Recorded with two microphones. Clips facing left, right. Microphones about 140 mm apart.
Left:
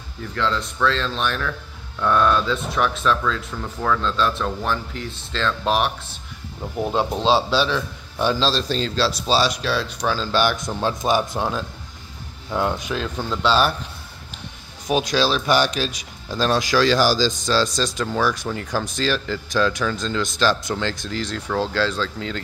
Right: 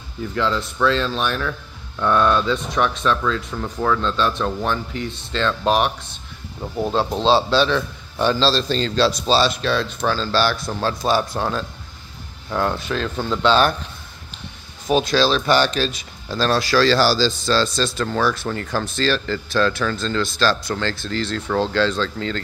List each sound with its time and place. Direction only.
0.3 s speech: 5° right (ahead or behind)
6.8 s speech: 15° left (ahead or behind)
14.9 s speech: 10° left (ahead or behind)